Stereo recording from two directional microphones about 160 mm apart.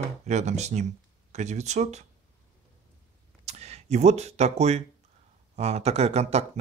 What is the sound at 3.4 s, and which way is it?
Speech, 40° right (ahead or behind).